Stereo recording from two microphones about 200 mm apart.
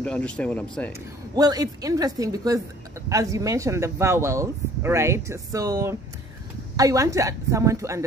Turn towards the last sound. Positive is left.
turn(degrees=-15)  # may be behind; listen again after turning